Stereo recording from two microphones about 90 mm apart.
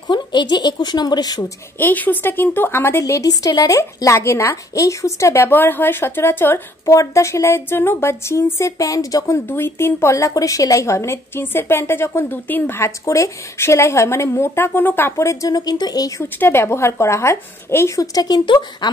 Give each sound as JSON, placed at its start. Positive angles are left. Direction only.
{"t": 0.1, "sound": "speech", "side_deg": 55}
{"t": 1.8, "sound": "speech", "side_deg": 20}
{"t": 9.5, "sound": "speech", "side_deg": 25}
{"t": 16.2, "sound": "a woman's voice", "side_deg": 25}